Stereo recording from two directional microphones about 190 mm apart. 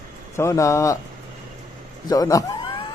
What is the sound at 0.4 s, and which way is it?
Speech, 15° left (ahead or behind).